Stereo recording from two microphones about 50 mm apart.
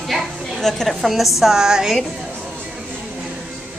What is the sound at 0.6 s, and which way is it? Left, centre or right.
Speech, centre.